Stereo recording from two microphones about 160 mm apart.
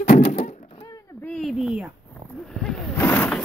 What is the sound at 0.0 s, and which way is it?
Thunk, 45° left (ahead or behind).